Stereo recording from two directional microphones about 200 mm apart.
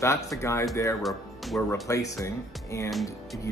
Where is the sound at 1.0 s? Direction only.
Centre (ahead or behind).